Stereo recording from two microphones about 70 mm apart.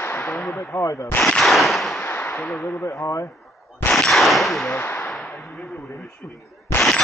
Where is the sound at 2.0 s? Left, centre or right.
Left.